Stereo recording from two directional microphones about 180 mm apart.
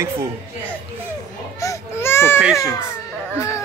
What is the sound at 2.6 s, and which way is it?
Speech, 15° left (ahead or behind).